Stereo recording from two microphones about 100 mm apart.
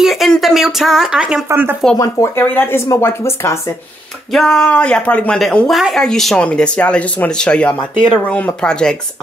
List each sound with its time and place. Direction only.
0.0 s a sound: centre (ahead or behind)
0.3 s speech: centre (ahead or behind)
1.5 s speech: 20° right (ahead or behind)
2.0 s speech: 30° left (ahead or behind)
2.4 s speech: 20° left (ahead or behind)
4.3 s a woman's voice: 5° left (ahead or behind)